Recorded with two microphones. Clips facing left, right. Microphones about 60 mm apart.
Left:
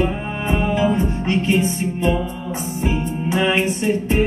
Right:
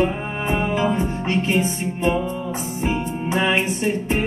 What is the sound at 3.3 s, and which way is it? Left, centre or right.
Music, centre.